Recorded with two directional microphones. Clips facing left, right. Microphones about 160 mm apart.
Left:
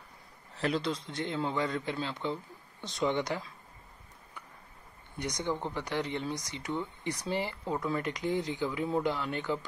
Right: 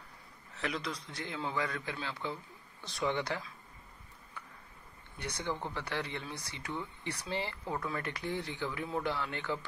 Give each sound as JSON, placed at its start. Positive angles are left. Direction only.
{"t": 0.6, "sound": "a man's voice", "side_deg": 30}
{"t": 5.2, "sound": "speech", "side_deg": 15}